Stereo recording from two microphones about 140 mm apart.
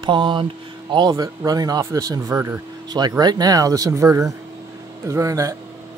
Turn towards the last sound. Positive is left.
turn(degrees=-25)  # may be behind; listen again after turning